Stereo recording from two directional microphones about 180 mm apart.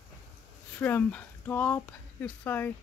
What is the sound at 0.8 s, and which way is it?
Speech, 10° left (ahead or behind).